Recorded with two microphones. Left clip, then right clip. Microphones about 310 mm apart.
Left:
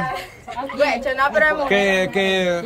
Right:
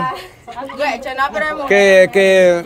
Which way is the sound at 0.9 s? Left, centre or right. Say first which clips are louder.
Right 1 dB; right.